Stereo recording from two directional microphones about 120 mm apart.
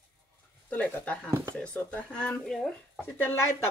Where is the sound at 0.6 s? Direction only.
10° left (ahead or behind).